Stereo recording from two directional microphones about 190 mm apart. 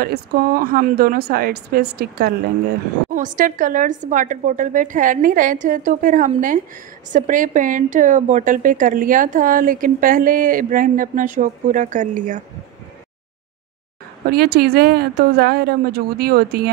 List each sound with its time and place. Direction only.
0.0 s a woman's voice: 50° right (ahead or behind)
14.2 s speech: 55° right (ahead or behind)